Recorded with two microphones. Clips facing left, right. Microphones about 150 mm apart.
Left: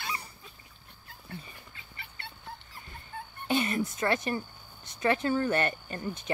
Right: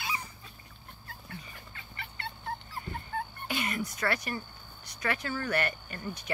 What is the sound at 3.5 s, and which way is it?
Speech, 30° left (ahead or behind).